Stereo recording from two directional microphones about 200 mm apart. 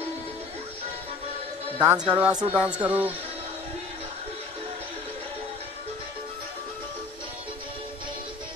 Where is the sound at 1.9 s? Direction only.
5° right (ahead or behind).